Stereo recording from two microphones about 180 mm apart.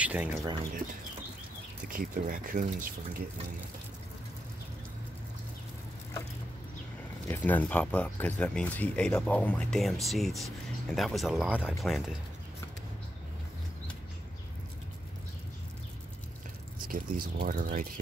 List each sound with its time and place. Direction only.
0.0 s a sound: 10° right (ahead or behind)
1.9 s speech: 50° right (ahead or behind)
7.2 s speech: 10° left (ahead or behind)
16.8 s speech: 50° right (ahead or behind)